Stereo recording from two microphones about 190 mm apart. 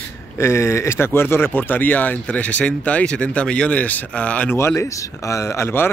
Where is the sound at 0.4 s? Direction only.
15° left (ahead or behind).